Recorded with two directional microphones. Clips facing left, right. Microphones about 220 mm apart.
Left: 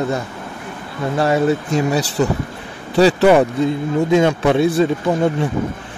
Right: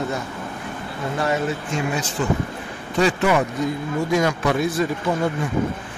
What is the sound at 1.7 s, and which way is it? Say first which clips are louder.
Speech: left 7 dB; 35° left (ahead or behind).